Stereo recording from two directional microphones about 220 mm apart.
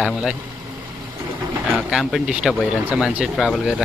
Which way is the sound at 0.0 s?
5° right (ahead or behind).